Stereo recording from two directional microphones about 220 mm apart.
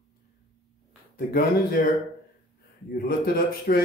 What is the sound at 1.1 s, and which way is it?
Speech, 45° left (ahead or behind).